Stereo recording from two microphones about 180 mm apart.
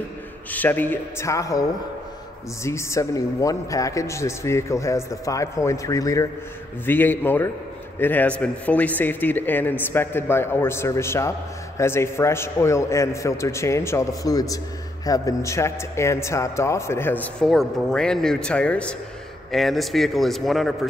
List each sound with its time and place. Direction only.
0.5 s a man's voice: 10° left (ahead or behind)